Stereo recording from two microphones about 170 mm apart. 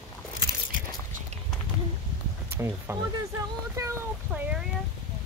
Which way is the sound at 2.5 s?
15° right (ahead or behind).